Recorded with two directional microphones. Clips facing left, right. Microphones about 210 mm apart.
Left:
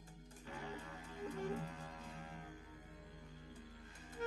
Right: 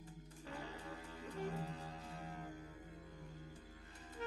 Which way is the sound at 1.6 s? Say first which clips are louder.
Right 1 dB; 35° right (ahead or behind).